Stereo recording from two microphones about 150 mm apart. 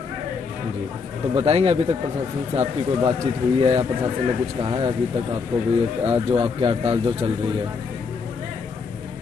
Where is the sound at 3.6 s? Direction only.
35° right (ahead or behind).